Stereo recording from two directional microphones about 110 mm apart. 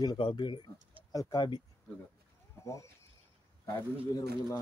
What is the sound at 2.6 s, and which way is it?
Speech, 30° left (ahead or behind).